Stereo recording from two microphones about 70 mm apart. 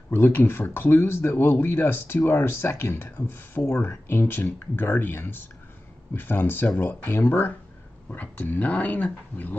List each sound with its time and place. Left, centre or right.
0.1 s speech: left